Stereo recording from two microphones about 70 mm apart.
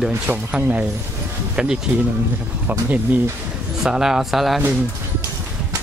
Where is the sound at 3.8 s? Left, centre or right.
Centre.